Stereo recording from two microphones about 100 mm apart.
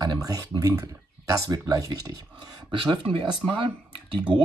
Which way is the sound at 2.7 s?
60° right (ahead or behind).